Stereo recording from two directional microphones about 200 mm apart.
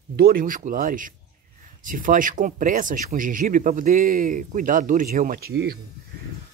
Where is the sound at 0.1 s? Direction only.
50° right (ahead or behind).